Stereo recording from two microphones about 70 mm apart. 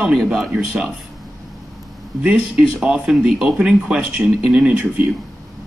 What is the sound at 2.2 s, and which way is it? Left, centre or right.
Speech, centre.